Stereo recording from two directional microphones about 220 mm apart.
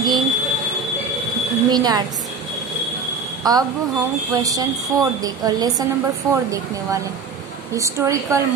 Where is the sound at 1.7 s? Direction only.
20° right (ahead or behind).